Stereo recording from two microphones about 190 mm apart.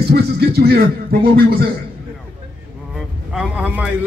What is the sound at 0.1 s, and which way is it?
A man's voice, 55° right (ahead or behind).